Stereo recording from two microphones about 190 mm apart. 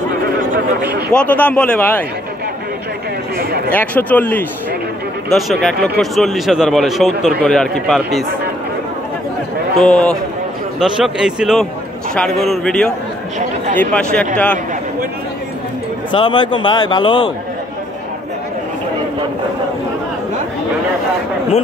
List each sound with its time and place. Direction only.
1.1 s a man's voice: 10° left (ahead or behind)
3.3 s speech: 50° right (ahead or behind)
3.7 s a man's voice: 10° left (ahead or behind)
9.8 s speech: 5° left (ahead or behind)
13.9 s a man's voice: 5° left (ahead or behind)
16.1 s a man's voice: 25° left (ahead or behind)